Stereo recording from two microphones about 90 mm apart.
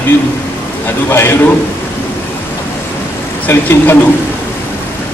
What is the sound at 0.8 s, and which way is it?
Speech, 25° left (ahead or behind).